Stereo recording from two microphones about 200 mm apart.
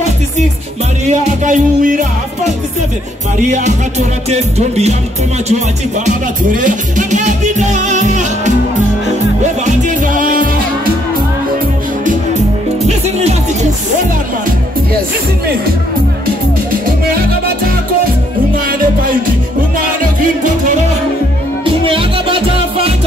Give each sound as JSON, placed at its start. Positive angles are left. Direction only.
{"t": 1.0, "sound": "music", "side_deg": -35}
{"t": 6.0, "sound": "music", "side_deg": -40}
{"t": 9.7, "sound": "music", "side_deg": -40}
{"t": 12.8, "sound": "music", "side_deg": -35}
{"t": 21.6, "sound": "music", "side_deg": -25}